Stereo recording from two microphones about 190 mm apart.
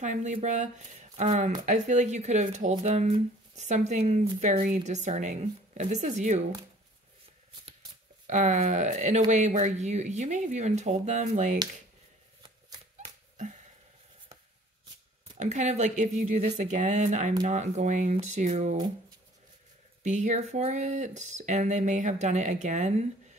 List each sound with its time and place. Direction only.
0.0 s speech: 40° right (ahead or behind)
8.3 s speech: 40° right (ahead or behind)
12.4 s shuffling cards: 25° right (ahead or behind)
15.3 s speech: 40° right (ahead or behind)
20.0 s speech: 40° right (ahead or behind)